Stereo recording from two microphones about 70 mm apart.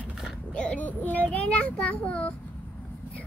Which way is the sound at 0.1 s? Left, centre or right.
Centre.